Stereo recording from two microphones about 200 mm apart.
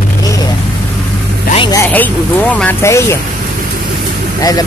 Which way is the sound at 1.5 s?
20° left (ahead or behind).